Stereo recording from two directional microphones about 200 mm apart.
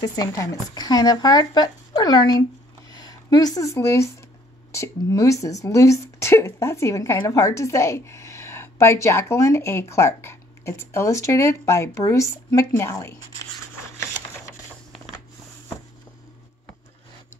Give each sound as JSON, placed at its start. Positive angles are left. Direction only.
{"t": 0.0, "sound": "speech", "side_deg": 20}